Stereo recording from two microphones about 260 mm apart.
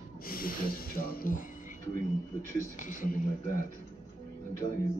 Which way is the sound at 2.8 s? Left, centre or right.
Left.